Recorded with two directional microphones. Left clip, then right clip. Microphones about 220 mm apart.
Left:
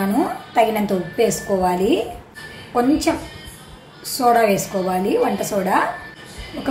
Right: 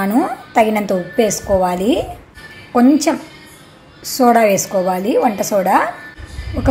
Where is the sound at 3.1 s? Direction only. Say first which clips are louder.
Right 3 dB; 30° right (ahead or behind).